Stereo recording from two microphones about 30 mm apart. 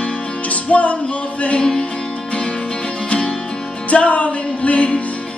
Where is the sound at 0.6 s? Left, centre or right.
Left.